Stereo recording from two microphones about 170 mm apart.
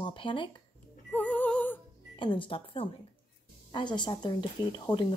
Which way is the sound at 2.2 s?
30° left (ahead or behind).